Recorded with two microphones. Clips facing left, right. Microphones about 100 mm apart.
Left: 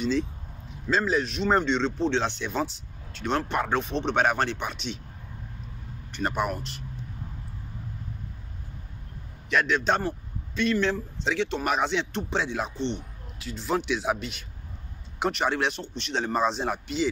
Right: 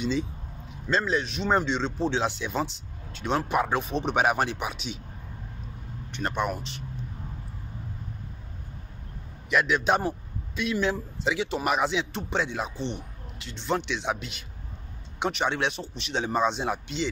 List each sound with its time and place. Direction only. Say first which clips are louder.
0.0 s speech: left 2 dB; centre (ahead or behind)
6.1 s speech: left 1 dB; 5° left (ahead or behind)
9.5 s speech: right 1 dB; 5° right (ahead or behind)